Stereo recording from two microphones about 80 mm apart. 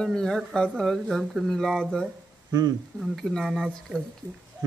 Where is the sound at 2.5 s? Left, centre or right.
Right.